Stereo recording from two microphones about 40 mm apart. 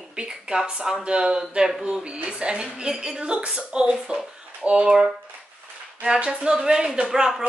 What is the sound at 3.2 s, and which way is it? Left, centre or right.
A woman's voice, right.